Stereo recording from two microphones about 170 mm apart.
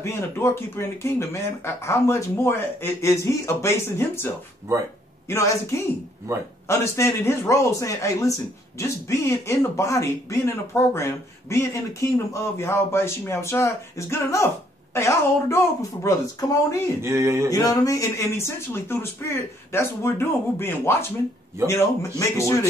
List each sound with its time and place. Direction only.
0.0 s speech: 15° left (ahead or behind)
5.3 s speech: 15° left (ahead or behind)
6.3 s speech: 15° right (ahead or behind)
6.7 s speech: 15° left (ahead or behind)
17.0 s speech: 15° right (ahead or behind)
17.5 s speech: 20° left (ahead or behind)